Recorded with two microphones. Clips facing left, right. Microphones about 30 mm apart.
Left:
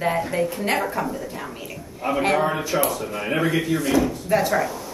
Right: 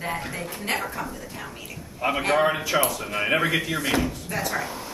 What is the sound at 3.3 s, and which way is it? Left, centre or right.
Speech, right.